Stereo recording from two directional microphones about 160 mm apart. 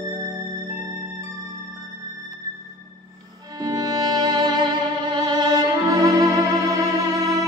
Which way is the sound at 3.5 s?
25° right (ahead or behind).